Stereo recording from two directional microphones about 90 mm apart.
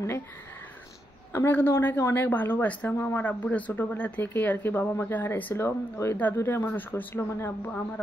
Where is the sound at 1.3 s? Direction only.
25° left (ahead or behind).